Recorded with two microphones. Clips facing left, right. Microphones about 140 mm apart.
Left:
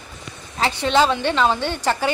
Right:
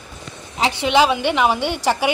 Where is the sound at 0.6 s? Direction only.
15° right (ahead or behind).